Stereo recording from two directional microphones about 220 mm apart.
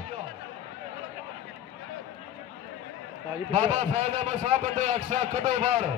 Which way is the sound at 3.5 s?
30° right (ahead or behind).